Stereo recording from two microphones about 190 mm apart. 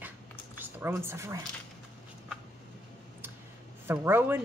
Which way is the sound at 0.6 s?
10° right (ahead or behind).